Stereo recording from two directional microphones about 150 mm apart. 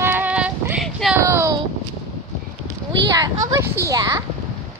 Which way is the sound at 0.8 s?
Centre (ahead or behind).